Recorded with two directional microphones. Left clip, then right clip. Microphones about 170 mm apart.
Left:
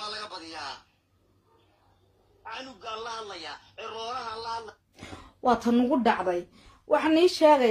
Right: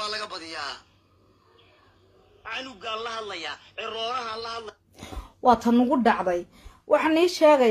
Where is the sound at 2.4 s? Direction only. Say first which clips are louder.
Right 5 dB; 60° right (ahead or behind).